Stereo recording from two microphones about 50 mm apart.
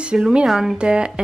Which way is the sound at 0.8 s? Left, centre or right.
Centre.